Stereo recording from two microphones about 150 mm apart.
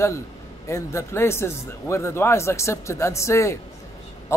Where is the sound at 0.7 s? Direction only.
20° left (ahead or behind).